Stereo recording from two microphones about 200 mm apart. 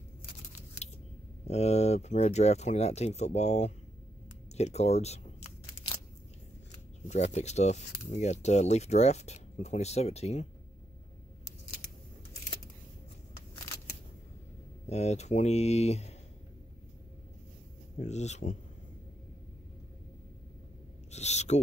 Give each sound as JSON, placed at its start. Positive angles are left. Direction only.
{"t": 1.4, "sound": "speech", "side_deg": 35}
{"t": 4.6, "sound": "a sound", "side_deg": 35}
{"t": 7.1, "sound": "speech", "side_deg": 35}
{"t": 14.9, "sound": "speech", "side_deg": 35}
{"t": 17.9, "sound": "speech", "side_deg": 35}
{"t": 21.1, "sound": "owl", "side_deg": 35}